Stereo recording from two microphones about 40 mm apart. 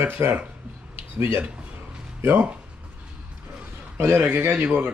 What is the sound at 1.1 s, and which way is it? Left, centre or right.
Speech, right.